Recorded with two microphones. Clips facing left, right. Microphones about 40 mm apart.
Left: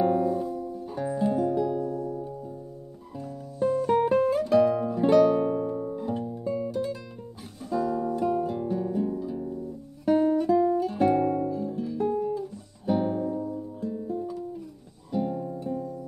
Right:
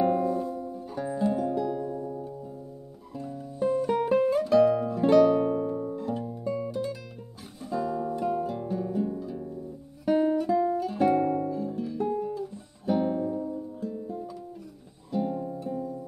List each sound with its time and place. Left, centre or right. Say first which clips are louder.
0.0 s music: left 1 dB; centre
0.6 s music: left 2 dB; centre
0.8 s music: left 1 dB; centre
1.8 s music: left 3 dB; centre
3.3 s music: left 1 dB; centre
10.0 s guitar: left 2 dB; centre
15.0 s music: left 1 dB; centre